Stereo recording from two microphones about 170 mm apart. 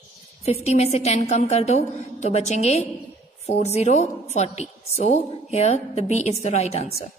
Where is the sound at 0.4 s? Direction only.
40° left (ahead or behind).